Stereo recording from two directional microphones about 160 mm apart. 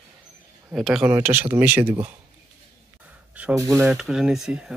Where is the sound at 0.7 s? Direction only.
Centre (ahead or behind).